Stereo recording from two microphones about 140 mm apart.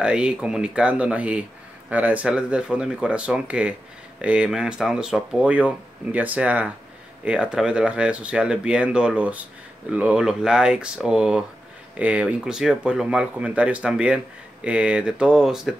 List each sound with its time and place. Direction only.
0.0 s speech: 5° right (ahead or behind)